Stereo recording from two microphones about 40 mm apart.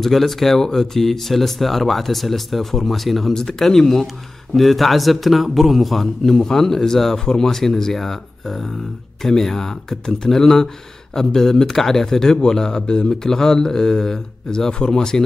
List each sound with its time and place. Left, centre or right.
0.0 s a man's voice: centre